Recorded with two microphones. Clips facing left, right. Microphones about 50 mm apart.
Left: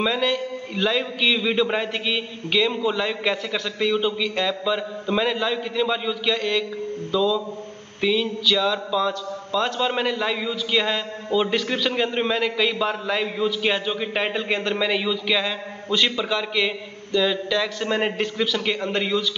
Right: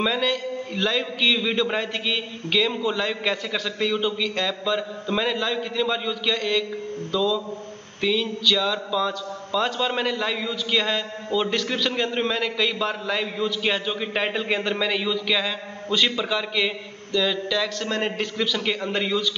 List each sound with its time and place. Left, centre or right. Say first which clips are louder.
0.0 s a man's voice: left 1 dB; centre